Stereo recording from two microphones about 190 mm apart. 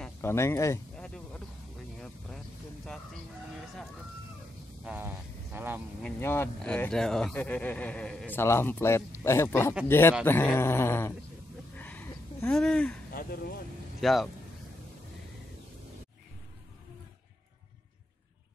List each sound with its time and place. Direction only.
0.0 s speech: 15° left (ahead or behind)
0.9 s a sound: 5° left (ahead or behind)
2.0 s vehicle: 5° left (ahead or behind)
4.8 s speech: 10° right (ahead or behind)
6.0 s speech: 10° left (ahead or behind)
11.7 s a sound: 10° left (ahead or behind)
13.1 s speech: 55° left (ahead or behind)
14.0 s speech: centre (ahead or behind)